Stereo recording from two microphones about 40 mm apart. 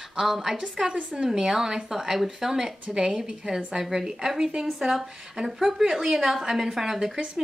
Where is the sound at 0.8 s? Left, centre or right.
Centre.